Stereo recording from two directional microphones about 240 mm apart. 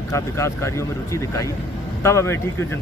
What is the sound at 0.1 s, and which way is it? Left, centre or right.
A man's voice, centre.